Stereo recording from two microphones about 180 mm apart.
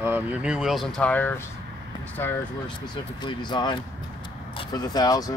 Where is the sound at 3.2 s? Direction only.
25° left (ahead or behind).